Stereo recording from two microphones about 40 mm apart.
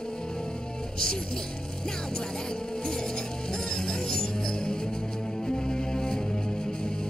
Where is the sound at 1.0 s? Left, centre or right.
Centre.